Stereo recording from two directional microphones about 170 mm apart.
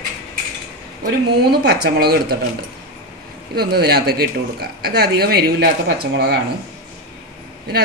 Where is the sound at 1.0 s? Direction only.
70° right (ahead or behind).